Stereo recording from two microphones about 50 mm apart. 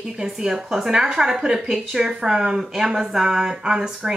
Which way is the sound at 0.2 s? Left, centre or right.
Centre.